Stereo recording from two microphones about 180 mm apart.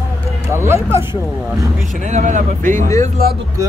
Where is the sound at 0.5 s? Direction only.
15° right (ahead or behind).